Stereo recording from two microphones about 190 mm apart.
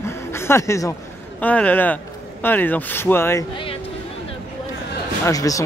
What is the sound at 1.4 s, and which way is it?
A man's voice, 10° left (ahead or behind).